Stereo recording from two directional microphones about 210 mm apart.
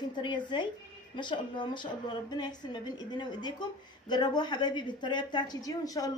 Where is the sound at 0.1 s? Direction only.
20° left (ahead or behind).